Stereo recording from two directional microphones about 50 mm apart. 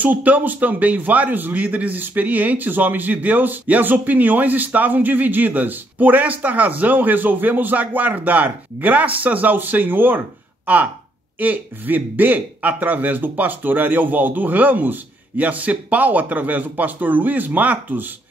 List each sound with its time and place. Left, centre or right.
0.0 s a man's voice: right